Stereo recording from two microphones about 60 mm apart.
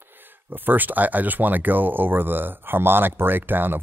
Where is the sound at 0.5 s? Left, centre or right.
Right.